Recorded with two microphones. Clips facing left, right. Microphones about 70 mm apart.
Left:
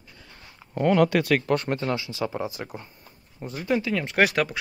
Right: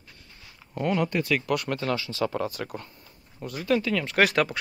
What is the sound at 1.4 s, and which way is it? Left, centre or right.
Speech, left.